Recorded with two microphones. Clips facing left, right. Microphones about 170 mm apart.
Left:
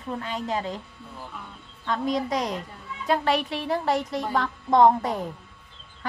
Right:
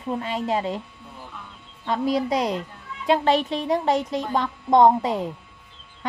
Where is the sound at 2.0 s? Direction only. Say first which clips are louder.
Right 3 dB; 5° right (ahead or behind).